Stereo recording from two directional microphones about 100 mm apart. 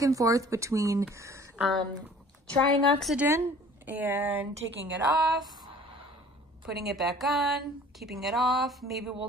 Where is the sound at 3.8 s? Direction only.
20° right (ahead or behind).